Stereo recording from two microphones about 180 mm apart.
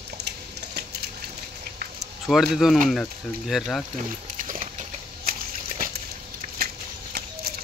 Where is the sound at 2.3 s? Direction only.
Centre (ahead or behind).